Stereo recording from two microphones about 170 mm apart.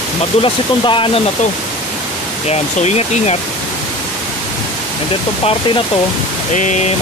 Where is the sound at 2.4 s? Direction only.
40° left (ahead or behind).